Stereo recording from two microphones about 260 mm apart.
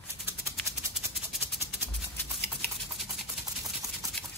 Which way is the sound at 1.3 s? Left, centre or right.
Centre.